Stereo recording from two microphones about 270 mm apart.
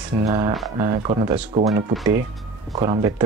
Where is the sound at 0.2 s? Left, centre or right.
Centre.